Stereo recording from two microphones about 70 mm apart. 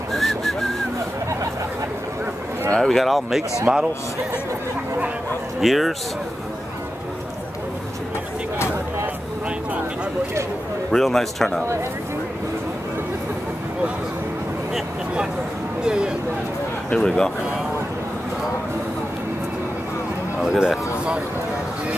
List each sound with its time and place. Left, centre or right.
0.1 s whistling: centre
2.7 s speech: centre
3.7 s a man's voice: right
5.6 s speech: centre
10.9 s speech: centre
15.8 s speech: centre
16.9 s speech: centre
20.4 s speech: centre